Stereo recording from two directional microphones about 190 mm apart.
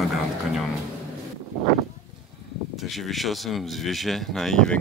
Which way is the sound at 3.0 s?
Centre (ahead or behind).